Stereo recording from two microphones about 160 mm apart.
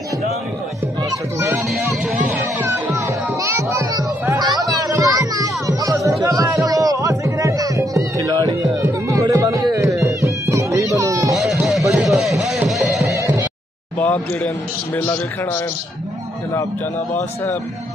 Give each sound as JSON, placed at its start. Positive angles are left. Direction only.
{"t": 2.2, "sound": "music", "side_deg": -15}
{"t": 11.9, "sound": "music", "side_deg": 0}
{"t": 13.0, "sound": "music", "side_deg": -20}
{"t": 13.9, "sound": "a sound", "side_deg": 10}
{"t": 15.0, "sound": "a man's voice", "side_deg": 15}